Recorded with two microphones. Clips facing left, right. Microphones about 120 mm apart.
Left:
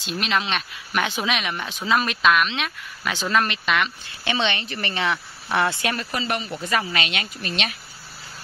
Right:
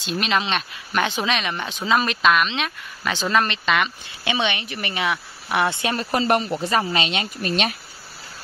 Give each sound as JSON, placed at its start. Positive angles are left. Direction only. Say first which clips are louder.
{"t": 0.0, "sound": "speech", "louder": "right 2 dB", "side_deg": 0}
{"t": 4.2, "sound": "speech", "louder": "right 1 dB", "side_deg": -15}
{"t": 5.9, "sound": "speech", "louder": "right 7 dB", "side_deg": -45}
{"t": 7.4, "sound": "speech", "louder": "right 6 dB", "side_deg": -40}